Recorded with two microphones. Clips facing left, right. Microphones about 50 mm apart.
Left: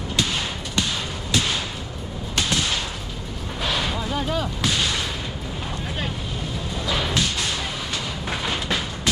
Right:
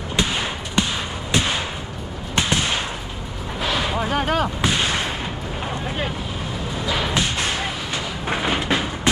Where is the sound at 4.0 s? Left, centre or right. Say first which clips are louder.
Right 5 dB; right.